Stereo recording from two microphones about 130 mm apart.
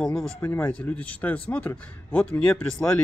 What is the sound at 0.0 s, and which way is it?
Speech, 5° left (ahead or behind).